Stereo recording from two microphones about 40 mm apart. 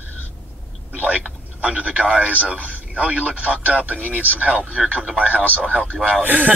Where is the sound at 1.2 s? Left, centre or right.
Right.